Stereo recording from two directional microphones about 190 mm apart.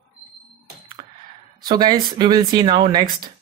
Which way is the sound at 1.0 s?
25° right (ahead or behind).